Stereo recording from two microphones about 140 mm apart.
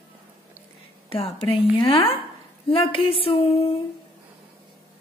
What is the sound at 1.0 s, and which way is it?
A woman's voice, 40° left (ahead or behind).